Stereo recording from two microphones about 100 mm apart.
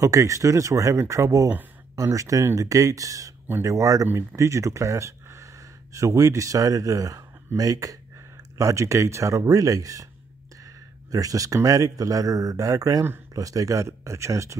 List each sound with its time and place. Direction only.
0.0 s speech: 30° right (ahead or behind)
3.4 s speech: 25° right (ahead or behind)
3.7 s speech: 35° right (ahead or behind)